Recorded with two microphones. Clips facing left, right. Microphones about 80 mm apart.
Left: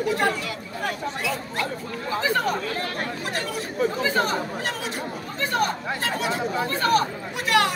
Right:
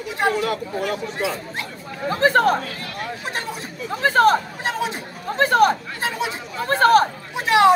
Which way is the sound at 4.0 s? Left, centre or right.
Right.